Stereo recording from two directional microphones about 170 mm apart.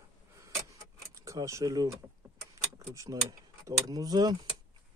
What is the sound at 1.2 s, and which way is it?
Speech, 20° right (ahead or behind).